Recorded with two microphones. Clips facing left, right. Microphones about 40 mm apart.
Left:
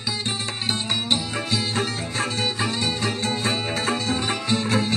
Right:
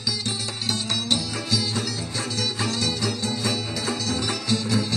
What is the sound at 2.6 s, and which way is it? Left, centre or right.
Music, left.